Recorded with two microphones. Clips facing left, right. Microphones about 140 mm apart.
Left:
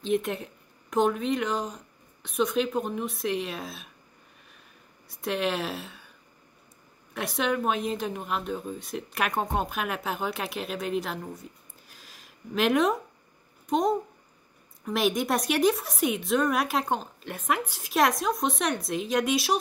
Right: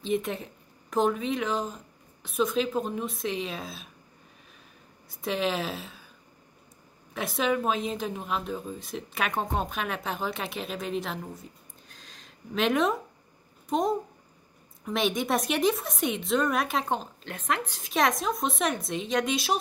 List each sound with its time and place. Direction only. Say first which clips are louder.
0.0 s a woman's voice: left 2 dB; centre (ahead or behind)
5.1 s a woman's voice: even; centre (ahead or behind)
7.2 s a woman's voice: right 1 dB; centre (ahead or behind)
11.9 s a sound: even; 5° left (ahead or behind)
13.7 s a woman's voice: left 2 dB; centre (ahead or behind)